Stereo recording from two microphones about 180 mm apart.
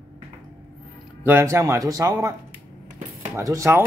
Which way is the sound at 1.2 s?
15° right (ahead or behind).